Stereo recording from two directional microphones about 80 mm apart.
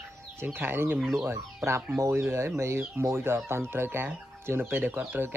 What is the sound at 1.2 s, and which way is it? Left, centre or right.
Speech, right.